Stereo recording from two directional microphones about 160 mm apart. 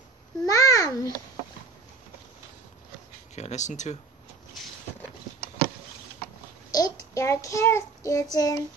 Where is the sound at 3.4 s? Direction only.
45° left (ahead or behind).